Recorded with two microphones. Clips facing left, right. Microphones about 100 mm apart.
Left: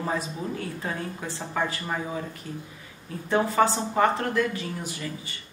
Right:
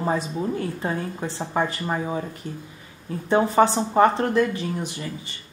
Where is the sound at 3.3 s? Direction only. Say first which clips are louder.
Right 4 dB; 25° right (ahead or behind).